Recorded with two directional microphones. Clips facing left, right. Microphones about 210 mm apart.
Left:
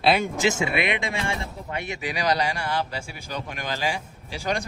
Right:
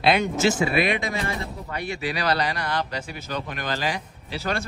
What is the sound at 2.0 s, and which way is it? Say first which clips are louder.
Speech: even; 15° left (ahead or behind).